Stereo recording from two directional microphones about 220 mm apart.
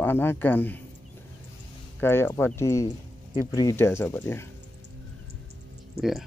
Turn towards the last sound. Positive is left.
turn(degrees=0)  # may be behind; listen again after turning